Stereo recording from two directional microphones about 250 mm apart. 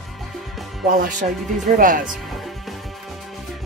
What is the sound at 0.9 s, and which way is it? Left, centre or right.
Speech, right.